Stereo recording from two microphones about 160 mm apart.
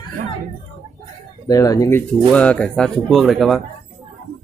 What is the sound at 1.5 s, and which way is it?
Speech, 20° left (ahead or behind).